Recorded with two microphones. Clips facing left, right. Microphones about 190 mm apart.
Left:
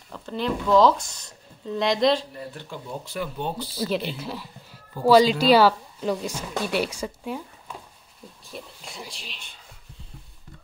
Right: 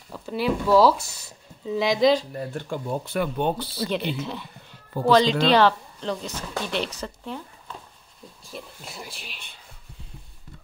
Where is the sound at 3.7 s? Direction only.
5° left (ahead or behind).